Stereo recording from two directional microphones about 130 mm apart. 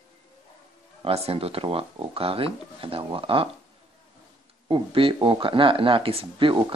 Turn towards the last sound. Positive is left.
turn(degrees=-40)  # may be behind; listen again after turning